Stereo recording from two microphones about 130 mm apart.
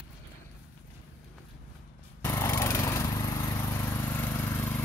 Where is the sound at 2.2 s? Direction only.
20° left (ahead or behind).